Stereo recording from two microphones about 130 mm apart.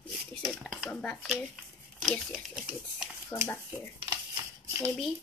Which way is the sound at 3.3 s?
35° left (ahead or behind).